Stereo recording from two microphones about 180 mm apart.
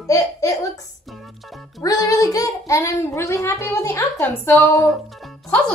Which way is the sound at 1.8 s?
20° left (ahead or behind).